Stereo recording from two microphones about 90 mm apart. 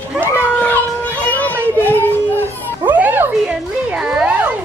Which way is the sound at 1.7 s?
25° left (ahead or behind).